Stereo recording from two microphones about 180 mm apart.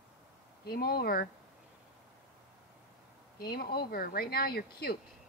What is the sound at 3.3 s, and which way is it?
Speech, 60° left (ahead or behind).